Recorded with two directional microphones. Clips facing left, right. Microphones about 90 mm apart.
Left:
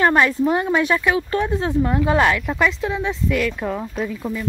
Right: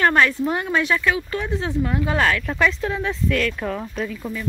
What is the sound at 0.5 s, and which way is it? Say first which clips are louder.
Speech: left 3 dB; 20° left (ahead or behind).